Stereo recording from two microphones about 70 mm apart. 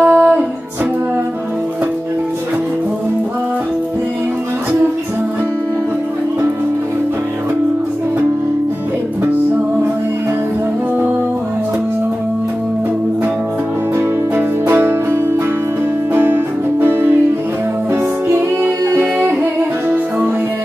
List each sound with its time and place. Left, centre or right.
0.0 s music: right
13.9 s music: right
16.8 s music: right
18.3 s music: right
19.1 s music: right